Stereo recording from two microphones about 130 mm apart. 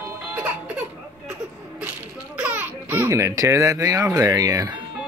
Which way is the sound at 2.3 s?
10° right (ahead or behind).